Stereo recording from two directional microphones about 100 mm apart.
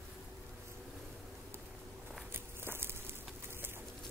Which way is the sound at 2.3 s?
25° right (ahead or behind).